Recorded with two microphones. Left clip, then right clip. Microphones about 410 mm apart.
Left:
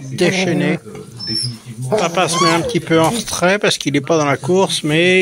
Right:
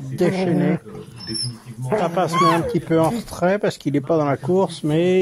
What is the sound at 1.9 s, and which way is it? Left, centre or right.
Speech, right.